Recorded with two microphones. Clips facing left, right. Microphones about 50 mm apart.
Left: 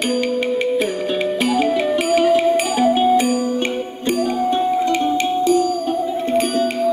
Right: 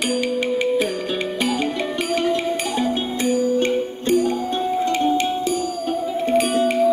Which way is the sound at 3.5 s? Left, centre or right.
Left.